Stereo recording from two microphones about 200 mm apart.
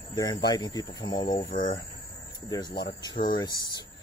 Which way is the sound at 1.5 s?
45° left (ahead or behind).